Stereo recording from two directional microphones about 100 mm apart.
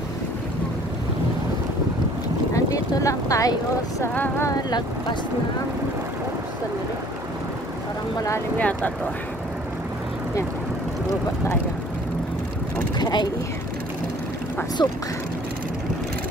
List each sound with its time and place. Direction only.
2.5 s vehicle: 35° left (ahead or behind)
4.1 s vehicle: 20° left (ahead or behind)
4.5 s speech: 40° left (ahead or behind)
8.5 s speech: 15° left (ahead or behind)
13.0 s speech: 45° left (ahead or behind)
14.8 s speech: 45° left (ahead or behind)